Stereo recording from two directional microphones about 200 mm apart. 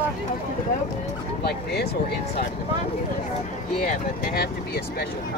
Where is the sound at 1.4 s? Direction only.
55° left (ahead or behind).